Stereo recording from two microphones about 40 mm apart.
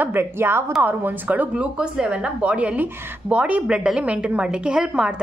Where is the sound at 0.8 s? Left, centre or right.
Right.